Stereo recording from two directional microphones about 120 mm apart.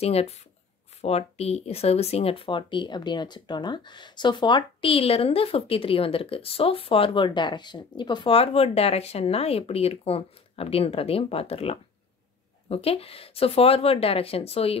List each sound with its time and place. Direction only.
0.0 s speech: 60° left (ahead or behind)